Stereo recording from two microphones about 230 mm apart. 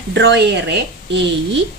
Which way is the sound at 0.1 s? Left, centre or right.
Right.